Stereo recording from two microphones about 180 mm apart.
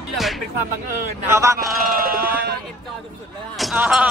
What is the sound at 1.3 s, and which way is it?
Speech, 15° right (ahead or behind).